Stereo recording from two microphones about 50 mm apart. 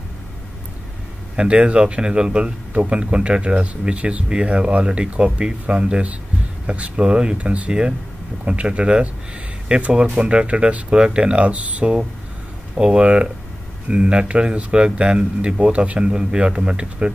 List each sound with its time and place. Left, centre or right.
1.3 s speech: centre